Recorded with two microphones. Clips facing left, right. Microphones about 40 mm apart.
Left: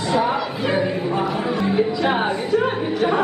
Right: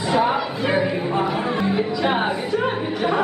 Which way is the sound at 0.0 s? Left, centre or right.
Centre.